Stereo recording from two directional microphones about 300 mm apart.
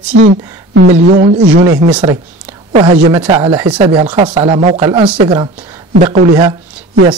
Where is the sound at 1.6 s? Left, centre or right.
Right.